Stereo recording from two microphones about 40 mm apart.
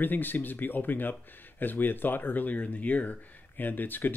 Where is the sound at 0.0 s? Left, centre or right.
Left.